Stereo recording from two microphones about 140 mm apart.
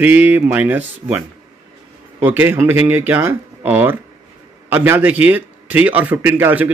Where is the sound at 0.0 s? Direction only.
10° right (ahead or behind).